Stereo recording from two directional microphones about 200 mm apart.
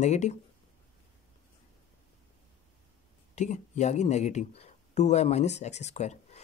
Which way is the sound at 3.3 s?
35° left (ahead or behind).